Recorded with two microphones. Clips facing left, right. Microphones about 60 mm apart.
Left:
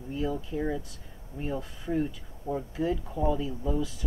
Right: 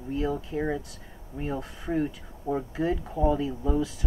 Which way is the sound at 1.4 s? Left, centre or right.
Centre.